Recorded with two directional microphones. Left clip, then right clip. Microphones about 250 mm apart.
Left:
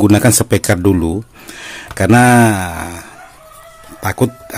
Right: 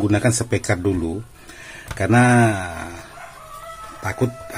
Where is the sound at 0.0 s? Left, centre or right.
Left.